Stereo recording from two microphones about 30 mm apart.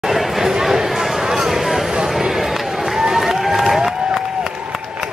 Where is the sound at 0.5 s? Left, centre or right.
Centre.